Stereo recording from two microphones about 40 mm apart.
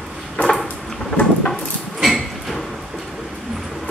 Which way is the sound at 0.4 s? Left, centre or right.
Left.